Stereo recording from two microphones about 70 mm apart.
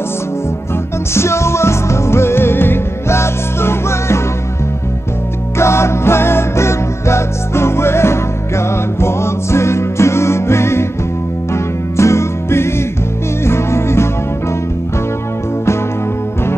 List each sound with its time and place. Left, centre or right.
1.1 s music: left
5.6 s music: left